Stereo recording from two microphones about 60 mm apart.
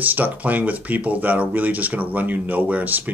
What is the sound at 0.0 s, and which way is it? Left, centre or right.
Speech, right.